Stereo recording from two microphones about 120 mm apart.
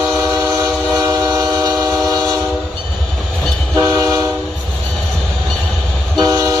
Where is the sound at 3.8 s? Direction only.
25° right (ahead or behind).